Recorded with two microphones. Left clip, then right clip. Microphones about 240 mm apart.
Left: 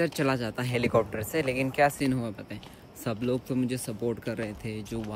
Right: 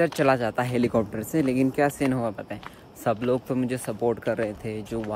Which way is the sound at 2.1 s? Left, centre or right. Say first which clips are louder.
Right 5 dB; centre.